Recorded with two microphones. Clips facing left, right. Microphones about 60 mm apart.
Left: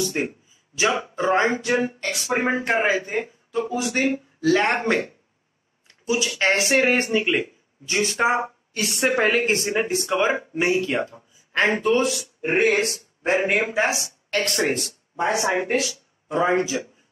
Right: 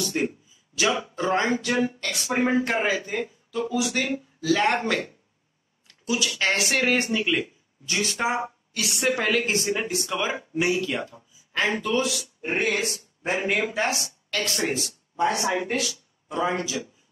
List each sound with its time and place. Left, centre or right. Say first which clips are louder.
0.0 s speech: left 1 dB; left
14.4 s speech: left 3 dB; left
15.4 s speech: left 3 dB; left